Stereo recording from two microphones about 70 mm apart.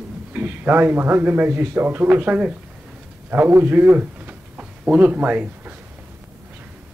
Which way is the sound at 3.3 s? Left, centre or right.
Right.